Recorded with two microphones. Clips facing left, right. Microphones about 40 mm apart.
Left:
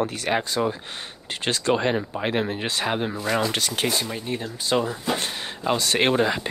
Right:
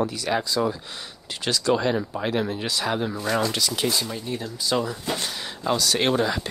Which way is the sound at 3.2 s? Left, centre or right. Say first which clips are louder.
Even; centre.